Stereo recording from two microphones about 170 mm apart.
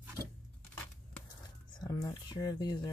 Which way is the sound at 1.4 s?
25° left (ahead or behind).